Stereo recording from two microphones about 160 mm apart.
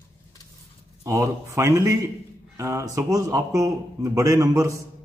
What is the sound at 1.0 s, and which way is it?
Mantra, 20° right (ahead or behind).